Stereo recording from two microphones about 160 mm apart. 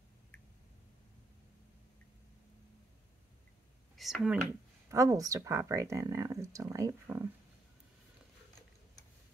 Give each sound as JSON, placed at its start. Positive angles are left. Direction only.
{"t": 3.9, "sound": "speech", "side_deg": 0}
{"t": 4.9, "sound": "speech", "side_deg": -20}